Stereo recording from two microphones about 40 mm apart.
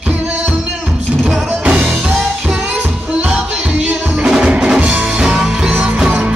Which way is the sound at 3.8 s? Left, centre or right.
Right.